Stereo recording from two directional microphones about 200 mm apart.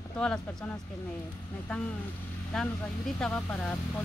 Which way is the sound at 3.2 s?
5° left (ahead or behind).